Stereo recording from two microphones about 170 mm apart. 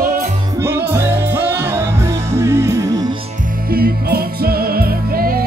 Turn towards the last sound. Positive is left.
turn(degrees=-60)  # may be behind; listen again after turning